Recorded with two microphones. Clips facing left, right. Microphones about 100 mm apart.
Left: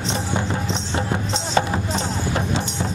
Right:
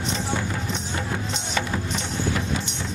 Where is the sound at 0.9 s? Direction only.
30° left (ahead or behind).